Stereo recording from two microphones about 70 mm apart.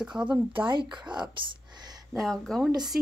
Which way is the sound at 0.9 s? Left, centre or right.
Right.